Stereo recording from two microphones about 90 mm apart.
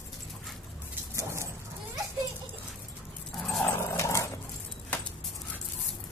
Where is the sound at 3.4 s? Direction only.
5° left (ahead or behind).